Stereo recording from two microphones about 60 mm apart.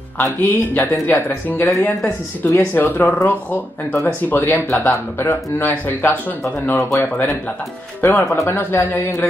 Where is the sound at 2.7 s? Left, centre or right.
Left.